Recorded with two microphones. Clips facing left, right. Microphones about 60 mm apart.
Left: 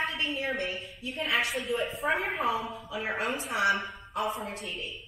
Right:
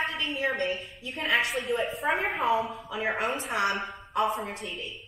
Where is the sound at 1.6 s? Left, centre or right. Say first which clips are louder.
Right 2 dB; right.